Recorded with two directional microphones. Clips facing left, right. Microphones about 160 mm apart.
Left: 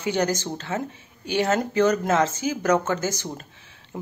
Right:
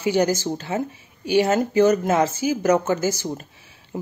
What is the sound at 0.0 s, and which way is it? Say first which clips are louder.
Speech: right 4 dB; 10° right (ahead or behind).